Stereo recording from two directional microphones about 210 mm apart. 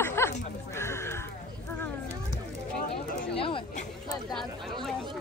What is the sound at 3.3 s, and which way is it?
Chatter, 25° left (ahead or behind).